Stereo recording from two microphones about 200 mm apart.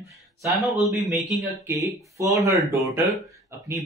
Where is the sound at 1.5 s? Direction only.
15° right (ahead or behind).